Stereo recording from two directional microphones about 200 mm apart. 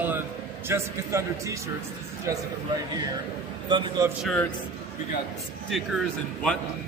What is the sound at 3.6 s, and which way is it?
Speech, 20° right (ahead or behind).